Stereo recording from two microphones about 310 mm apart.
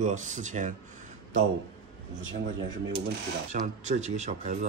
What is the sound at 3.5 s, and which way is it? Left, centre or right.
Speech, right.